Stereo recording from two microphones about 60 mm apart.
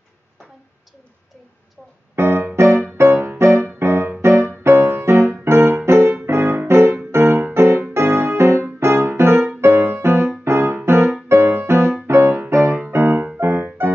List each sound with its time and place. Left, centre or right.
2.1 s keyboard: right
3.0 s music: right
7.5 s keyboard: right
8.7 s music: right
12.4 s keyboard: right
12.9 s music: right